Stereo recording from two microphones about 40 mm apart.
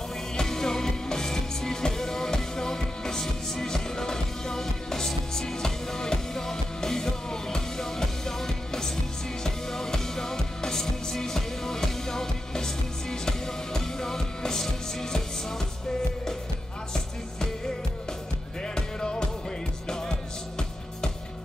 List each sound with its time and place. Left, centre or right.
0.4 s music: centre
18.6 s music: centre